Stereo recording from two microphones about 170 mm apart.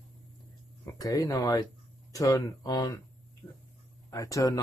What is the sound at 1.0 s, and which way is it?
Speech, 20° left (ahead or behind).